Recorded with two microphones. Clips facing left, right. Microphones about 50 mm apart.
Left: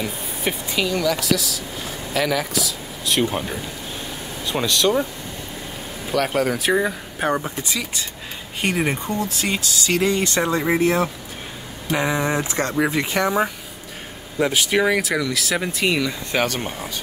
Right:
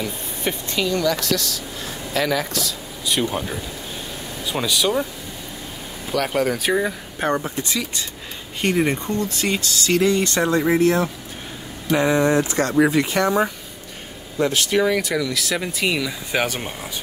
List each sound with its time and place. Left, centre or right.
0.0 s speech: centre
6.1 s speech: centre
9.8 s speech: left
14.4 s speech: centre